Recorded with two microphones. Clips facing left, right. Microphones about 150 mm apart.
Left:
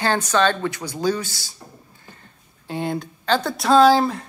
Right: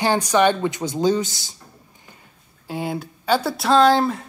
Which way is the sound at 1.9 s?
15° right (ahead or behind).